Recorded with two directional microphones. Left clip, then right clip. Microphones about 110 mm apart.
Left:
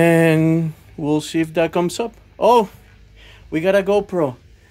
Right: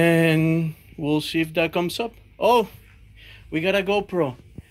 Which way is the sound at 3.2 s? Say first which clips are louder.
Left 4 dB; 20° left (ahead or behind).